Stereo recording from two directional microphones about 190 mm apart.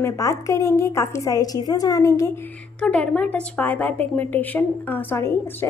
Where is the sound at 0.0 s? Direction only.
15° left (ahead or behind).